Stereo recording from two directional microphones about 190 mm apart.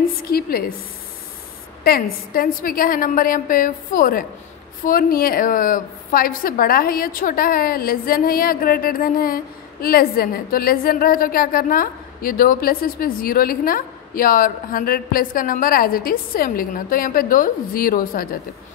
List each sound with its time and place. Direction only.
0.2 s a woman's voice: 50° left (ahead or behind)
1.9 s a woman's voice: 50° left (ahead or behind)